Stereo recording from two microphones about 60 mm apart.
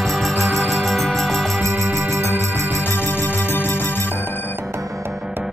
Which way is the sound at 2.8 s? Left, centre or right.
Left.